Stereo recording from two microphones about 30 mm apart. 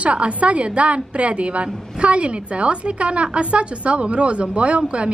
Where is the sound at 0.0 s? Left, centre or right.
Right.